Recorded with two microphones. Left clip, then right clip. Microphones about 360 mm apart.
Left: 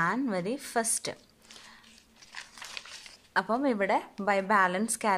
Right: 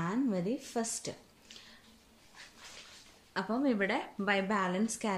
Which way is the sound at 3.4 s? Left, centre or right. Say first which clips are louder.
Left 5 dB; centre.